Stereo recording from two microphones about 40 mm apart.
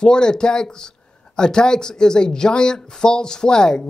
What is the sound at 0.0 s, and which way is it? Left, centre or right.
Speech, centre.